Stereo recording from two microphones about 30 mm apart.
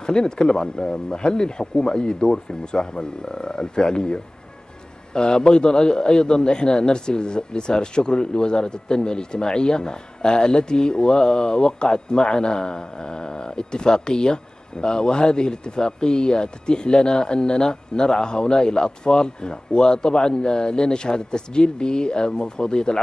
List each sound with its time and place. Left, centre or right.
0.0 s a man's voice: left